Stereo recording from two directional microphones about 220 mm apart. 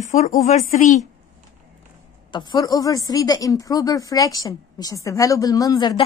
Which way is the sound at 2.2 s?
20° left (ahead or behind).